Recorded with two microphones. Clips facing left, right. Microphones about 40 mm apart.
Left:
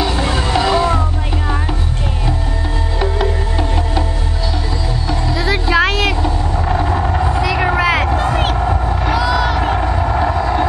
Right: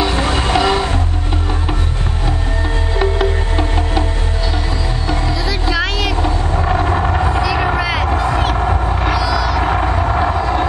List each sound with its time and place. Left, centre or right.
0.2 s music: right
0.6 s music: centre
3.0 s music: centre
5.3 s music: left
5.7 s vehicle: left
6.6 s vehicle: centre
7.5 s vehicle: centre
7.8 s vehicle: left
8.5 s a sound: centre
9.1 s music: left
9.6 s vehicle: centre